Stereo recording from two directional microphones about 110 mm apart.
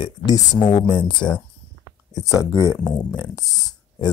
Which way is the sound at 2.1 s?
30° left (ahead or behind).